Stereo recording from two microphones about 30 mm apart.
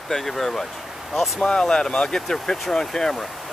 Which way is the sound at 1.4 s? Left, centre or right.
Left.